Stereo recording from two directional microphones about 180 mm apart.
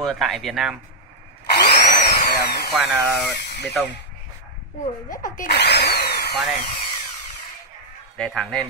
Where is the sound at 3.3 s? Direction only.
70° left (ahead or behind).